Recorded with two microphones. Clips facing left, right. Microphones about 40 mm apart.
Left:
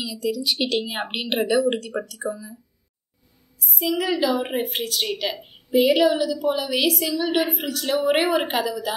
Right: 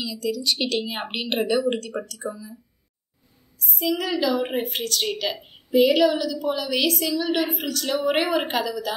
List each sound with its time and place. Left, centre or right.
0.0 s a woman's voice: centre
3.5 s a woman's voice: centre